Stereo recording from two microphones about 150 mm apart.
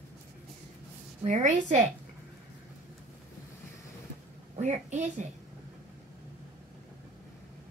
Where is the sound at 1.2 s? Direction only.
55° right (ahead or behind).